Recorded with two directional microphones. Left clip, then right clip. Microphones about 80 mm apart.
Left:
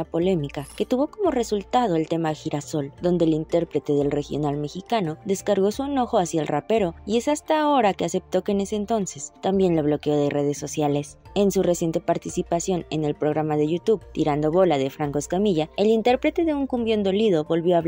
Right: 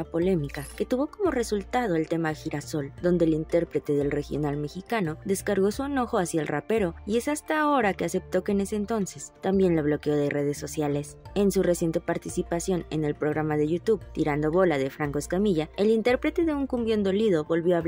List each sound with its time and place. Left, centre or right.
0.1 s speech: left